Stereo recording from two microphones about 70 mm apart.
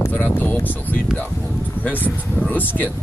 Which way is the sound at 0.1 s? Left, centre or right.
Left.